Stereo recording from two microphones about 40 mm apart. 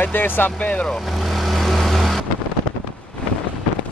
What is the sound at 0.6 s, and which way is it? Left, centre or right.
Speech, left.